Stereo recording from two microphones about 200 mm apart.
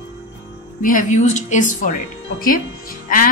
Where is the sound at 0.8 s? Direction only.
40° left (ahead or behind).